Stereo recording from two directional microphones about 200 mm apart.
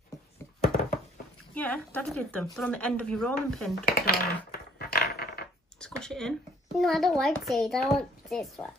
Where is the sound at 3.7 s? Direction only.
50° left (ahead or behind).